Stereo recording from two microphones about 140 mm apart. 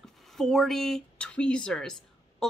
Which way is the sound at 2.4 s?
5° left (ahead or behind).